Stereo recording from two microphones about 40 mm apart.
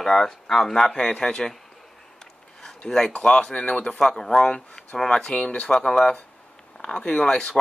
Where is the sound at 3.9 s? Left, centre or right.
Centre.